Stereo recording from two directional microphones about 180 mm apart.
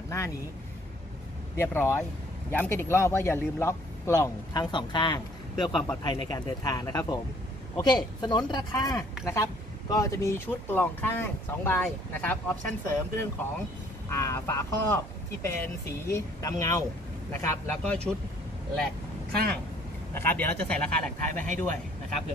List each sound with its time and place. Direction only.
1.6 s speech: 15° left (ahead or behind)
5.7 s speech: 5° left (ahead or behind)
6.0 s speech: 20° left (ahead or behind)
20.2 s speech: 10° left (ahead or behind)